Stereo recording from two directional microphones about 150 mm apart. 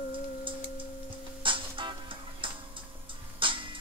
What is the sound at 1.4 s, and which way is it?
Music, 35° right (ahead or behind).